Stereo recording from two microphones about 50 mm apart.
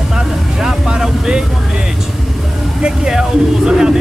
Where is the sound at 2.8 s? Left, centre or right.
Centre.